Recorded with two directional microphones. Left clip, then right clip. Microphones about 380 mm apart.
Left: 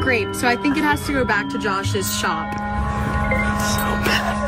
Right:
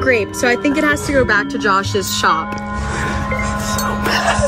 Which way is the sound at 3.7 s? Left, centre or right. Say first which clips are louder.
Right 5 dB; centre.